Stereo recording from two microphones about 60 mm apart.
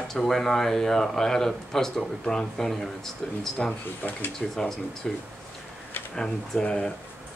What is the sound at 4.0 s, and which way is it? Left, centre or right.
Speech, left.